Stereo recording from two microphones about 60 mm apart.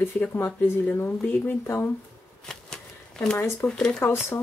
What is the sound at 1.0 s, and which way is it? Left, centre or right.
Speech, left.